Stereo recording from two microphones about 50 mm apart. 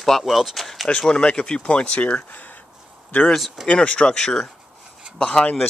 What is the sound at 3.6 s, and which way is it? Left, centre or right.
Speech, left.